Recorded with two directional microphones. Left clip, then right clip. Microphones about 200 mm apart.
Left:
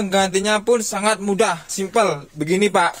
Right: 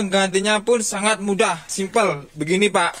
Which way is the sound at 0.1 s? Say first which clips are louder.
Left 1 dB; centre (ahead or behind).